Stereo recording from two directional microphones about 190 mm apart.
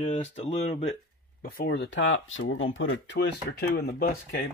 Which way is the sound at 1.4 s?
55° left (ahead or behind).